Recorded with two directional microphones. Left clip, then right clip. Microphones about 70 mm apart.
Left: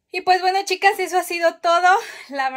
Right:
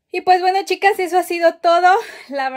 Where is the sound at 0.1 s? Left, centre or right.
Right.